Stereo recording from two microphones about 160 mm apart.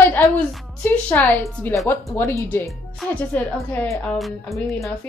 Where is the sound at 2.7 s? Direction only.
5° left (ahead or behind).